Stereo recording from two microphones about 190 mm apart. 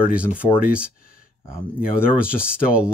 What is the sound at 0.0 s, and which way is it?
Speech, 5° right (ahead or behind).